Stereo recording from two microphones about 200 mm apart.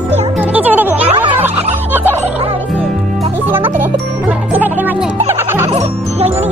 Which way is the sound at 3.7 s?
10° right (ahead or behind).